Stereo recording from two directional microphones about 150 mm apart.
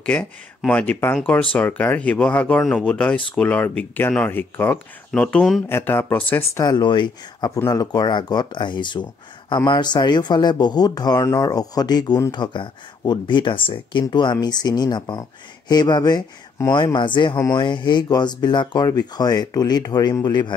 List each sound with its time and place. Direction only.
0.0 s speech: 10° left (ahead or behind)
6.6 s speech: 30° left (ahead or behind)